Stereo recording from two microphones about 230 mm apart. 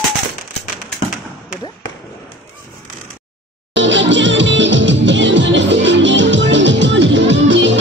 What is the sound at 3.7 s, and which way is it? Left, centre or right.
Music, right.